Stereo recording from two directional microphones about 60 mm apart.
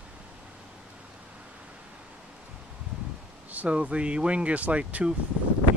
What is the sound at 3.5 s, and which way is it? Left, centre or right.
Speech, right.